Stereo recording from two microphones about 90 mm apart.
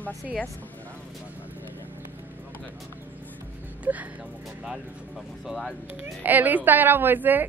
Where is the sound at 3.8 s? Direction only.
15° right (ahead or behind).